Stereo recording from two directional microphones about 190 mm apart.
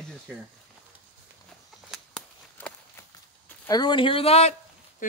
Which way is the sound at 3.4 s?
20° left (ahead or behind).